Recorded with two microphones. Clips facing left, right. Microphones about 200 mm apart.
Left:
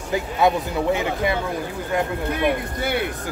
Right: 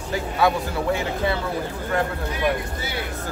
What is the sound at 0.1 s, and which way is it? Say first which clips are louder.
Speech: left 2 dB; 20° left (ahead or behind).